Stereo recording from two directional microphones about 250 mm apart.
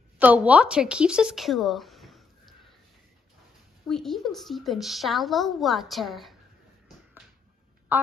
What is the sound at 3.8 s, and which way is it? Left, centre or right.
A woman's voice, centre.